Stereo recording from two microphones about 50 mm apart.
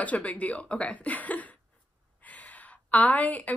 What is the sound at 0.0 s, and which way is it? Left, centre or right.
Speech, left.